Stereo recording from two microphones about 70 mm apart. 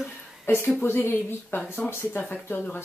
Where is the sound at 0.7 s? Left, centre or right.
Left.